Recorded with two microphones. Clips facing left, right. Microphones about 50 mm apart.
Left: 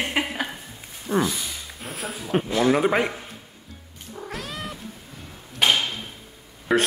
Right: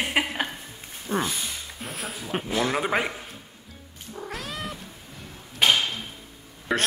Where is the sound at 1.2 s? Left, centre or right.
Right.